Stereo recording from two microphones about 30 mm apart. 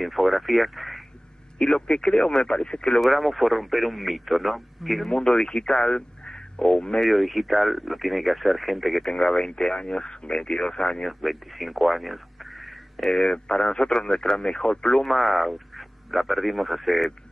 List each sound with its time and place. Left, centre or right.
0.0 s speech: centre
1.6 s speech: left
3.0 s speech: centre
5.1 s speech: left
7.0 s speech: centre
9.1 s speech: left
11.1 s speech: centre
13.1 s speech: left
15.0 s speech: centre